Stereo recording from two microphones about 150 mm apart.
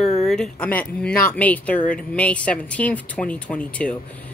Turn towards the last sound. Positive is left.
turn(degrees=10)  # may be behind; listen again after turning